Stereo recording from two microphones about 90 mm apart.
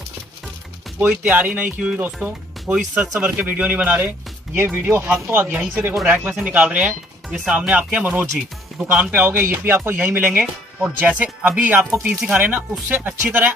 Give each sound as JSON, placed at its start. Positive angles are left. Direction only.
{"t": 1.0, "sound": "speech", "side_deg": -15}